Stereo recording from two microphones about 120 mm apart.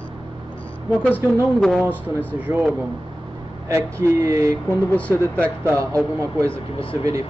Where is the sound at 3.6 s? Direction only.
25° right (ahead or behind).